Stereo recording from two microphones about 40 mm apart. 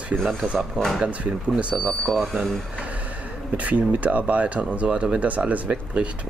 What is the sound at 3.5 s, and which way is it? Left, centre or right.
Speech, right.